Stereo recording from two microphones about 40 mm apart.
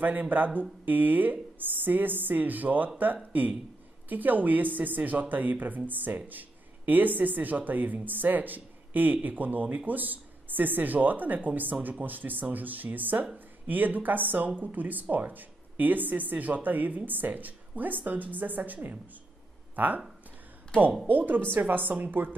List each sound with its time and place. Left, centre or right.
0.0 s speech: right
21.1 s speech: right